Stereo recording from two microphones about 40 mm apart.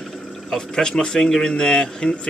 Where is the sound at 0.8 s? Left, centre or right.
Centre.